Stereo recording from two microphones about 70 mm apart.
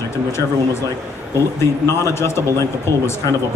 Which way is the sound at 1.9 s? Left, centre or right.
Left.